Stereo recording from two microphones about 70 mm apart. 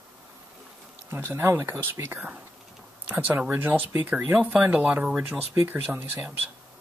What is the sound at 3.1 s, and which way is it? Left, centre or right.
Speech, right.